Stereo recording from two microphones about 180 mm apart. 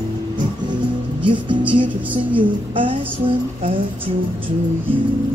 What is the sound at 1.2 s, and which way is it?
Speech, 25° right (ahead or behind).